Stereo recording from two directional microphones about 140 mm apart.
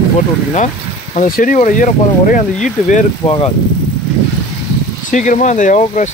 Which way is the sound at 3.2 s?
40° left (ahead or behind).